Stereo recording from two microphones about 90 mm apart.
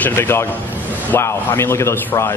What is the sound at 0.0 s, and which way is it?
A man's voice, 25° left (ahead or behind).